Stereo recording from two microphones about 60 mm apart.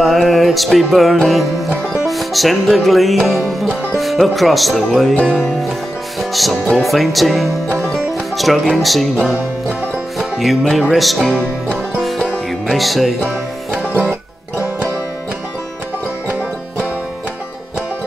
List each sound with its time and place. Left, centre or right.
0.0 s music: centre
1.1 s music: centre
9.1 s music: right
10.1 s music: centre
12.6 s music: centre